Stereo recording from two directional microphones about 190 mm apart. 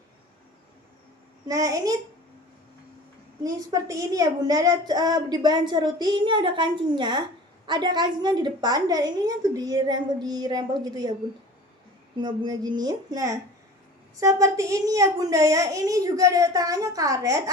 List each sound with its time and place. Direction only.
1.5 s a woman's voice: 15° right (ahead or behind)
3.4 s a woman's voice: 20° right (ahead or behind)
12.2 s a woman's voice: 20° right (ahead or behind)